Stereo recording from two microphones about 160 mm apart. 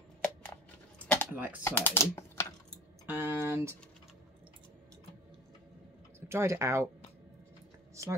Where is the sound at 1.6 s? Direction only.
15° left (ahead or behind).